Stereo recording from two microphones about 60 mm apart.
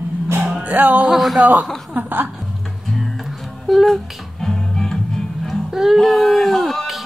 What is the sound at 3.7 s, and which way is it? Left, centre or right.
Music, centre.